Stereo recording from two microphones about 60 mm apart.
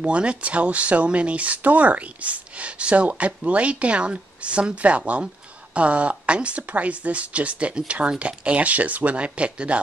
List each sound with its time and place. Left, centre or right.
0.0 s speech: centre